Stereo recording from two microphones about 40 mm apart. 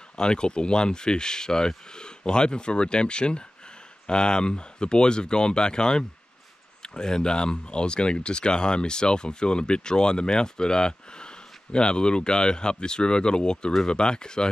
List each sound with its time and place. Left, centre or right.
0.1 s speech: left